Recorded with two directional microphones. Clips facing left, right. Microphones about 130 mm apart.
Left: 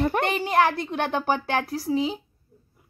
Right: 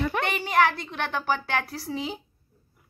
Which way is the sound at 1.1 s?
20° left (ahead or behind).